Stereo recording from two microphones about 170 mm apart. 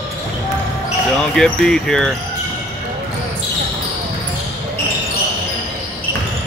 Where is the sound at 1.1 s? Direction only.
5° left (ahead or behind).